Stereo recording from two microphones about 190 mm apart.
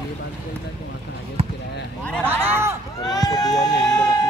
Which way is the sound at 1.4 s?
30° right (ahead or behind).